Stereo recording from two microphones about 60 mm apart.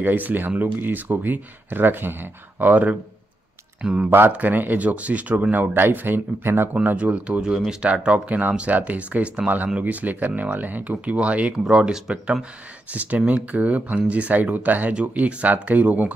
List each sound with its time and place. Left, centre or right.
0.0 s speech: right
3.8 s speech: centre
4.3 s speech: right
6.7 s speech: right
11.6 s speech: centre
12.9 s speech: right